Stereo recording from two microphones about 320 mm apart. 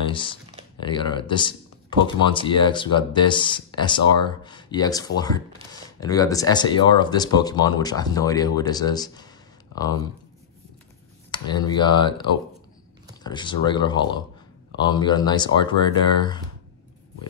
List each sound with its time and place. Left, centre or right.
0.1 s speech: centre
11.3 s speech: centre